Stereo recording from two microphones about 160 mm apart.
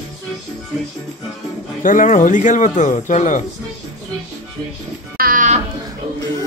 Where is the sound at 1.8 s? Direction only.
55° left (ahead or behind).